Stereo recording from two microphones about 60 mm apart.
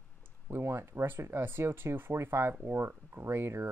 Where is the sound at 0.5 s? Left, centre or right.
Right.